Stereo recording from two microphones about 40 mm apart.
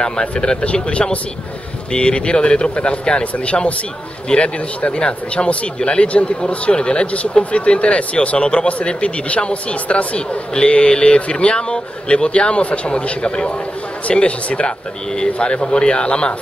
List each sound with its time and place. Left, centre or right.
0.0 s speech: left